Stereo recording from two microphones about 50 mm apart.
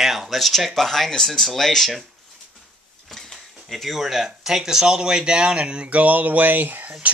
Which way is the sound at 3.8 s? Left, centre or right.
Centre.